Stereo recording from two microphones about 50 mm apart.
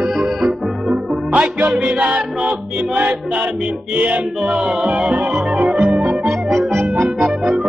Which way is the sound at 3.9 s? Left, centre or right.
Right.